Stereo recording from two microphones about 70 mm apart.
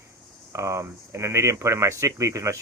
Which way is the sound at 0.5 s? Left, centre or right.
Right.